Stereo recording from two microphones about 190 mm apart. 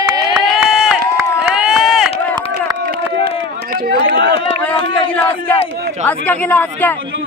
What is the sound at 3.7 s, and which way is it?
Run, 50° right (ahead or behind).